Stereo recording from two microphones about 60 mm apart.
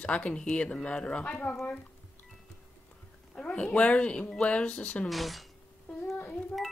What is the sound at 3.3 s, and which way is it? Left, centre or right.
Speech, centre.